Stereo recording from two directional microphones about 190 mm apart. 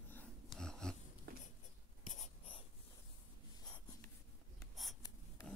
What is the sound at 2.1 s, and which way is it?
Writing, 35° left (ahead or behind).